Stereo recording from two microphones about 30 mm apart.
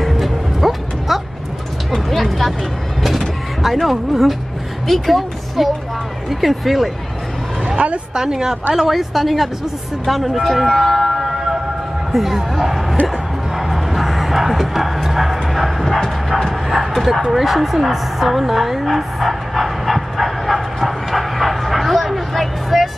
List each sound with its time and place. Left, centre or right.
0.0 s music: centre
2.0 s a sound: centre
3.9 s a woman's voice: centre
8.1 s a woman's voice: centre
11.2 s a sound: centre
13.6 s music: centre
16.3 s a woman's voice: centre
18.5 s dog: centre